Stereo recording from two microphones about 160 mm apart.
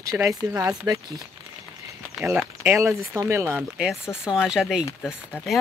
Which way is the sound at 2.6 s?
15° right (ahead or behind).